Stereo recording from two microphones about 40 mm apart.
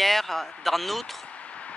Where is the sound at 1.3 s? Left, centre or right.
Left.